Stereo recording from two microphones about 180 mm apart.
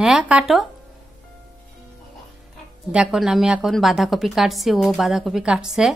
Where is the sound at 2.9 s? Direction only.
5° right (ahead or behind).